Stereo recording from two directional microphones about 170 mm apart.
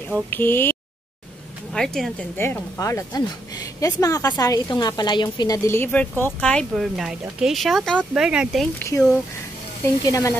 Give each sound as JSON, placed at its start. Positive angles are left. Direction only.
{"t": 0.3, "sound": "speech", "side_deg": 10}
{"t": 8.7, "sound": "speech", "side_deg": 15}
{"t": 10.0, "sound": "speech", "side_deg": 20}